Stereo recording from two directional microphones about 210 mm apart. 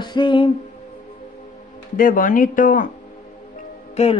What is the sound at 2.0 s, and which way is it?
Speech, 40° left (ahead or behind).